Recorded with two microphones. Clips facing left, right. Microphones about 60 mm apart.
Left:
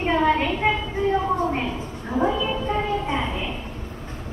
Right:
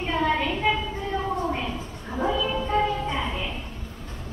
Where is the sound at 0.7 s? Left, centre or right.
Centre.